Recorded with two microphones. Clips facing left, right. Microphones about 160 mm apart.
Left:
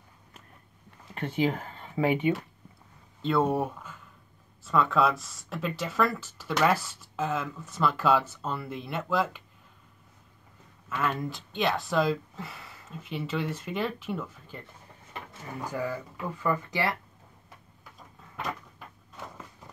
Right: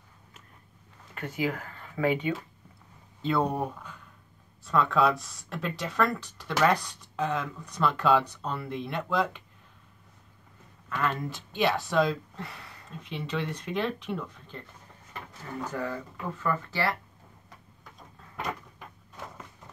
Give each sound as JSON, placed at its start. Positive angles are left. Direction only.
{"t": 1.1, "sound": "speech", "side_deg": 30}
{"t": 3.2, "sound": "speech", "side_deg": 0}
{"t": 11.0, "sound": "speech", "side_deg": 0}
{"t": 15.6, "sound": "speech", "side_deg": 10}
{"t": 18.3, "sound": "a sound", "side_deg": 0}